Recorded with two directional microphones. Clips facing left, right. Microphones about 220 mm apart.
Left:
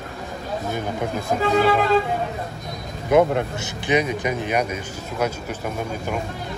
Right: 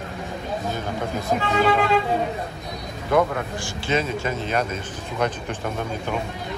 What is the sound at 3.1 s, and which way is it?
Speech, 20° left (ahead or behind).